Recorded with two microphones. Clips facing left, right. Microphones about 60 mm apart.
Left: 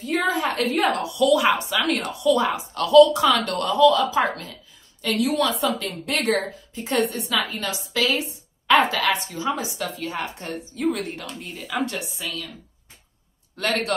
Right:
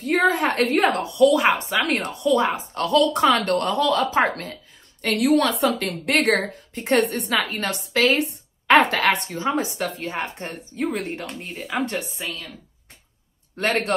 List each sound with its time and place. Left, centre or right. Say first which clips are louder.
0.0 s a woman's voice: right 3 dB; right
0.9 s a woman's voice: right 2 dB; right
13.6 s speech: right 2 dB; right